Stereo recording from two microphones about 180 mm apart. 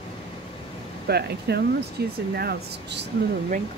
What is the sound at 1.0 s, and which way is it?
Speech, 65° right (ahead or behind).